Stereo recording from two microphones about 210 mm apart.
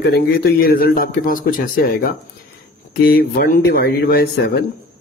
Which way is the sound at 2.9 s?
45° left (ahead or behind).